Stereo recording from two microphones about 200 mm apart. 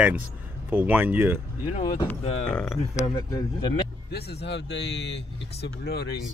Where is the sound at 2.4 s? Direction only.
5° left (ahead or behind).